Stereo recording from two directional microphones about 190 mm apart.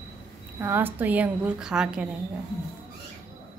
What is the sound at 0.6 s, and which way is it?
Speech, 10° right (ahead or behind).